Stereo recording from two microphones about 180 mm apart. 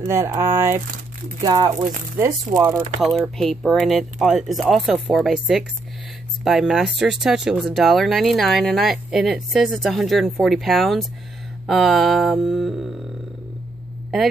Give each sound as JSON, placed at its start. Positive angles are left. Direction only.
{"t": 0.0, "sound": "speech", "side_deg": -15}
{"t": 3.0, "sound": "speech", "side_deg": 0}
{"t": 14.1, "sound": "speech", "side_deg": 0}